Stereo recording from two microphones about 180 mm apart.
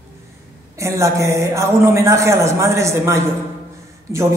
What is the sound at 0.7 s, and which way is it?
A man's voice, 15° right (ahead or behind).